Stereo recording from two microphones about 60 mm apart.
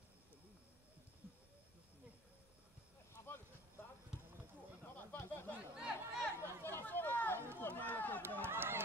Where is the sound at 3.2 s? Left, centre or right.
Left.